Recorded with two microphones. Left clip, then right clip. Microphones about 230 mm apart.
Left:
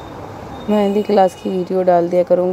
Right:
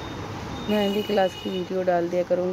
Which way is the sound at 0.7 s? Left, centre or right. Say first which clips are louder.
Left 9 dB; left.